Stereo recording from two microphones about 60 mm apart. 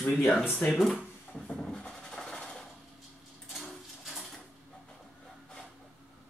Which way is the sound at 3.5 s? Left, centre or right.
Centre.